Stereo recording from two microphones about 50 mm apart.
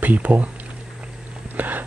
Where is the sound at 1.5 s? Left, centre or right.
Right.